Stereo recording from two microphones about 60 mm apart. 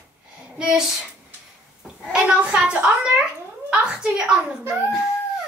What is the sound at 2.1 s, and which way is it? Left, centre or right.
A child's voice, centre.